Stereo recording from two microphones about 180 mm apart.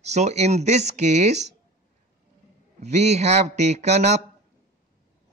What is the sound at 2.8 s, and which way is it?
Speech, 40° right (ahead or behind).